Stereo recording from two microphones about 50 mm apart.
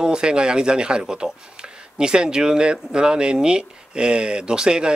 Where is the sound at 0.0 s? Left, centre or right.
Centre.